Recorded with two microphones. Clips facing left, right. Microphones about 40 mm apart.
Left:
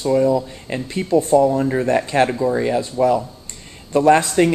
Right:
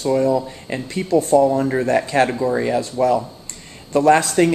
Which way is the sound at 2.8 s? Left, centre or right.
Centre.